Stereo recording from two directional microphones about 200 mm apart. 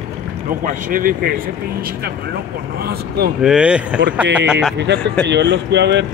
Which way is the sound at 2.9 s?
50° right (ahead or behind).